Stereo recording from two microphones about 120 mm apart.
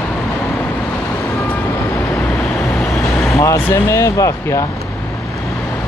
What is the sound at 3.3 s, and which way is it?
Speech, 25° left (ahead or behind).